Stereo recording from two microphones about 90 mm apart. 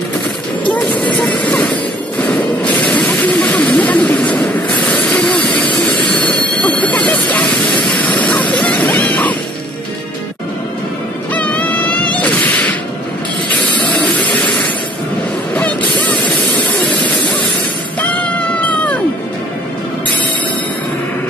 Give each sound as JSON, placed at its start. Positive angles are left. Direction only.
{"t": 1.1, "sound": "vehicle", "side_deg": 10}
{"t": 2.6, "sound": "a sound", "side_deg": 15}
{"t": 3.3, "sound": "vehicle", "side_deg": 10}
{"t": 5.8, "sound": "jet engine", "side_deg": 5}
{"t": 6.8, "sound": "a sound", "side_deg": 15}
{"t": 11.3, "sound": "music", "side_deg": 15}
{"t": 13.7, "sound": "steam", "side_deg": 10}
{"t": 18.1, "sound": "cat", "side_deg": 15}